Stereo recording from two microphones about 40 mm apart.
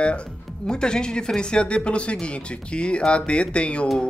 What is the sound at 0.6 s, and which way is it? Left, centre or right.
A man's voice, centre.